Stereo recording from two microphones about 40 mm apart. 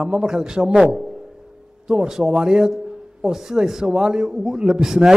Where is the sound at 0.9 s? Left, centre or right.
Centre.